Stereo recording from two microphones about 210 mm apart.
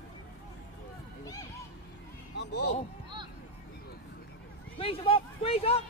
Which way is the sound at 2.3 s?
55° left (ahead or behind).